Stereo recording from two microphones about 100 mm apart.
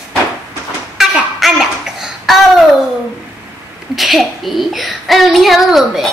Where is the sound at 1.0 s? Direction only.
Centre (ahead or behind).